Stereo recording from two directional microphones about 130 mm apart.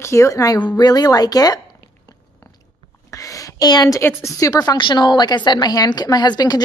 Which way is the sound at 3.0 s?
25° left (ahead or behind).